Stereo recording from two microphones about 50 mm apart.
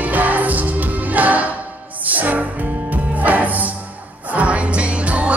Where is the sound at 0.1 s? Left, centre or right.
Right.